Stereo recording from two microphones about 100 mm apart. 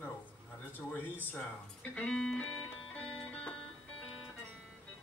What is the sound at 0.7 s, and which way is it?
Speech, 20° left (ahead or behind).